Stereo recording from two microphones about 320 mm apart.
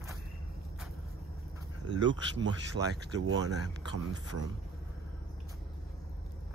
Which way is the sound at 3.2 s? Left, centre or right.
Right.